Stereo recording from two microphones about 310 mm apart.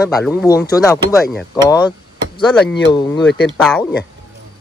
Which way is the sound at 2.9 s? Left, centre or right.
Centre.